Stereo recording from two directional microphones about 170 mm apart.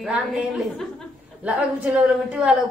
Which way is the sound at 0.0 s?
5° right (ahead or behind).